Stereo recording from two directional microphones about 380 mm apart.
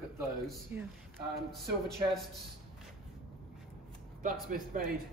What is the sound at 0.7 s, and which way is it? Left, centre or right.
Speech, centre.